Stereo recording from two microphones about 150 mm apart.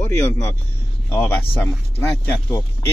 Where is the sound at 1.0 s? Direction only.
10° left (ahead or behind).